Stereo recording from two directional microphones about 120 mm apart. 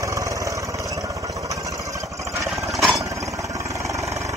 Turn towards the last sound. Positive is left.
turn(degrees=0)  # may be behind; listen again after turning